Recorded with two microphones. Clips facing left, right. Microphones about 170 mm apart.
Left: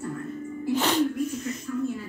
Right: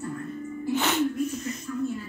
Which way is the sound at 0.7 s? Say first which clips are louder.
Left 2 dB; 35° left (ahead or behind).